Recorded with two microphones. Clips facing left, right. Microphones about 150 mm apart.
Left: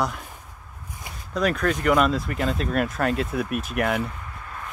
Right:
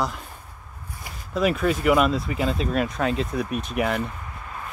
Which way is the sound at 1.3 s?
5° right (ahead or behind).